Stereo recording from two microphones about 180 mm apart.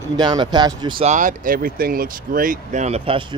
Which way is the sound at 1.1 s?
50° right (ahead or behind).